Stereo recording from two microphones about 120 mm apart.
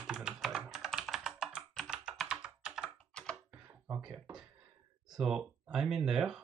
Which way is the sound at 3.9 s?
5° right (ahead or behind).